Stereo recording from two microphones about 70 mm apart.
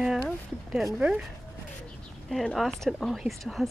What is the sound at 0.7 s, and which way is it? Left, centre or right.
Speech, centre.